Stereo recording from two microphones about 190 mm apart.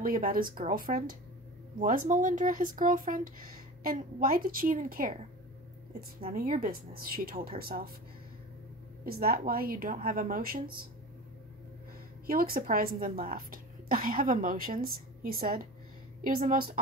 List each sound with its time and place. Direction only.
0.0 s speech: 50° right (ahead or behind)
9.0 s speech: 50° right (ahead or behind)
12.3 s speech: 50° right (ahead or behind)